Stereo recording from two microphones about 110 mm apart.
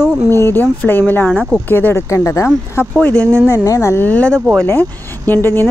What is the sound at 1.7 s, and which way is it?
Speech, 20° left (ahead or behind).